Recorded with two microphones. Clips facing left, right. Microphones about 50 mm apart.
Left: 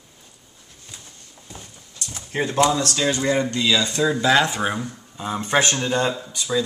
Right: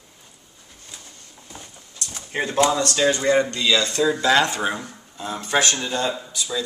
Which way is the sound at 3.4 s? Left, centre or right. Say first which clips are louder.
Even; centre.